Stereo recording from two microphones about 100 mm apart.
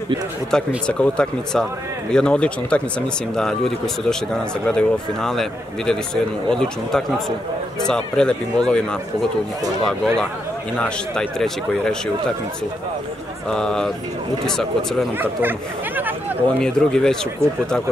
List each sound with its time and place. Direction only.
0.5 s speech: 10° left (ahead or behind)
9.8 s speech: 5° left (ahead or behind)
13.5 s speech: 5° left (ahead or behind)
15.1 s speech: 20° right (ahead or behind)
16.5 s speech: 5° left (ahead or behind)